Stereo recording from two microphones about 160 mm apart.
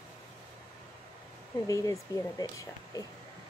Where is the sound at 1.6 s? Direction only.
20° left (ahead or behind).